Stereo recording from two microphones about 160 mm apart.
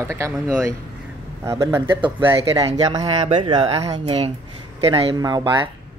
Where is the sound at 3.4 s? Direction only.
35° right (ahead or behind).